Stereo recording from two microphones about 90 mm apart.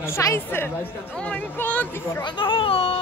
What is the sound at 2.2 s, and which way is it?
Speech, 65° left (ahead or behind).